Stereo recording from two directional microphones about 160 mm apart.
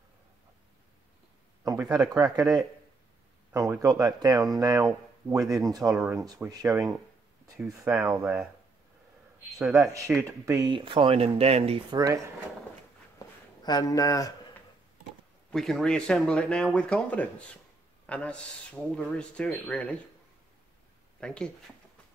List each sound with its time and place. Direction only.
1.6 s a sound: 20° right (ahead or behind)
2.2 s speech: 5° right (ahead or behind)
4.0 s speech: 25° right (ahead or behind)
7.5 s speech: 5° right (ahead or behind)
9.6 s speech: centre (ahead or behind)
10.4 s speech: 20° right (ahead or behind); by 11.8 s 40° right (ahead or behind)
11.9 s speech: 25° right (ahead or behind)
13.6 s speech: 25° left (ahead or behind)
15.5 s speech: centre (ahead or behind)
21.2 s speech: 5° left (ahead or behind)